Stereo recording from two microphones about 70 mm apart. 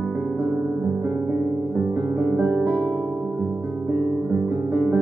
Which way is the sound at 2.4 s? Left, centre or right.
Centre.